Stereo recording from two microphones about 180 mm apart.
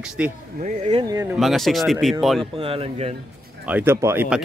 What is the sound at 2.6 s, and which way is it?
Speech, 30° right (ahead or behind).